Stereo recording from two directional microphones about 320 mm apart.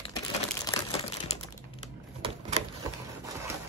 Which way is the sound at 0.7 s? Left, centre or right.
Centre.